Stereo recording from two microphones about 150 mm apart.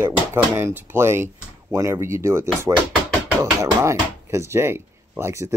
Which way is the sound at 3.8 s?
20° right (ahead or behind).